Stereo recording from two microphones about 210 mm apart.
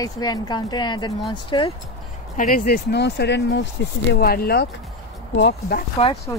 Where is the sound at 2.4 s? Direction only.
40° left (ahead or behind); by 3.7 s 60° left (ahead or behind).